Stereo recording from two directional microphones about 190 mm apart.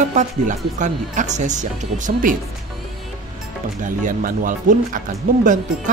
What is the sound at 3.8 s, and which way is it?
Speech, 45° right (ahead or behind).